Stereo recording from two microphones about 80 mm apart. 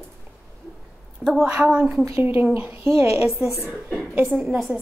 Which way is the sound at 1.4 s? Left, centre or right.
Centre.